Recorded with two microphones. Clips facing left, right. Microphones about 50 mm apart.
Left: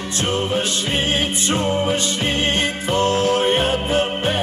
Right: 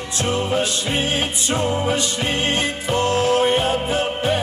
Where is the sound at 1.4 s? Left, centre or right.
Left.